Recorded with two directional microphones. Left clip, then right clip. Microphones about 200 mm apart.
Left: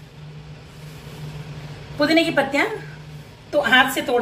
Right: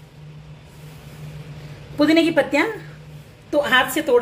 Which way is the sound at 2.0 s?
55° right (ahead or behind).